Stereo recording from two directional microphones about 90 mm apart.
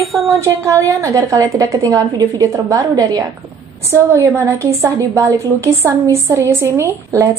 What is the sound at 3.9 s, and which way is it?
A woman's voice, 30° right (ahead or behind).